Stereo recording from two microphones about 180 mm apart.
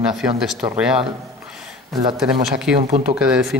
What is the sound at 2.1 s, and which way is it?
Speech, 5° right (ahead or behind).